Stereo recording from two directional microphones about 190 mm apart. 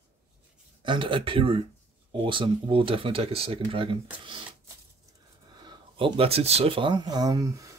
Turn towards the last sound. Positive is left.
turn(degrees=-15)  # may be behind; listen again after turning